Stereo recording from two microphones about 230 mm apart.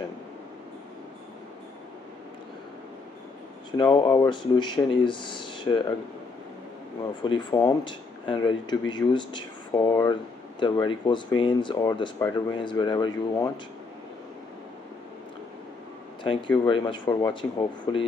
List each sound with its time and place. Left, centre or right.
3.7 s speech: centre
7.2 s speech: centre
16.3 s speech: left